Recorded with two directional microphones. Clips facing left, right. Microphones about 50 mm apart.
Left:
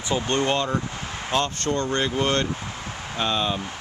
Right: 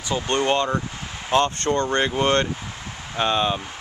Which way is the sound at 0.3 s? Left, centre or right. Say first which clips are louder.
Right 3 dB; centre.